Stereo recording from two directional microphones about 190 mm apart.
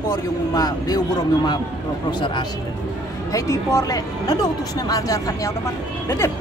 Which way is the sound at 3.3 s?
15° left (ahead or behind).